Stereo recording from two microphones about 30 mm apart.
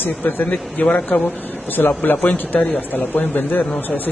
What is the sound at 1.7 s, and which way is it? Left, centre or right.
Speech, left.